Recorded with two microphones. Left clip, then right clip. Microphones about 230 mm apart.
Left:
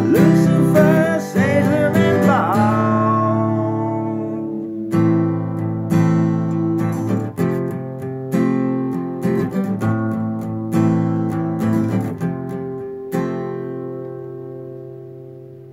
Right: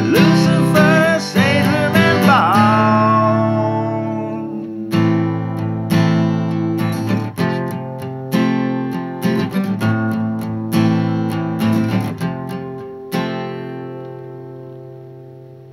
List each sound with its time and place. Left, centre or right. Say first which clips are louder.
0.1 s music: right 2 dB; centre
1.0 s music: right 3 dB; centre
3.7 s music: right 2 dB; centre
4.9 s music: even; right